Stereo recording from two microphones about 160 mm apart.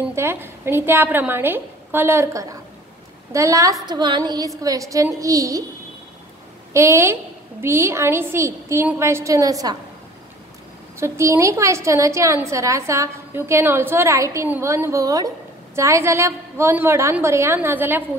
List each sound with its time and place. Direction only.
0.1 s a woman's voice: 15° right (ahead or behind)
6.7 s a woman's voice: 20° right (ahead or behind)
11.0 s a woman's voice: 15° right (ahead or behind)